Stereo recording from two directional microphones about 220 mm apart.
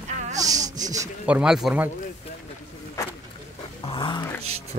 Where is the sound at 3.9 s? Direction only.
20° left (ahead or behind).